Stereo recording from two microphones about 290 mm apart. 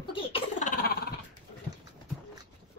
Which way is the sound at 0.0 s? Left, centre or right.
Centre.